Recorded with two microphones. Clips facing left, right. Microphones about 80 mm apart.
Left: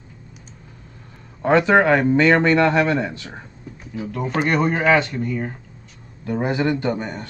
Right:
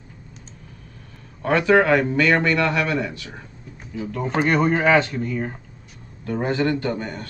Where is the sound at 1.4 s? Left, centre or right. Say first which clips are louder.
Left 2 dB; left.